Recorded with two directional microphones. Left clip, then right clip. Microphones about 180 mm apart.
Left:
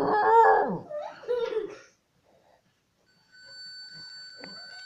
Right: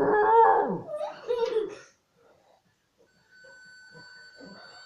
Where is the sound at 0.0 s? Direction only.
20° left (ahead or behind).